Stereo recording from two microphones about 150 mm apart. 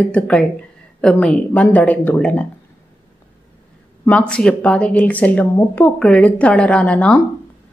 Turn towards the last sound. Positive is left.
turn(degrees=10)  # may be behind; listen again after turning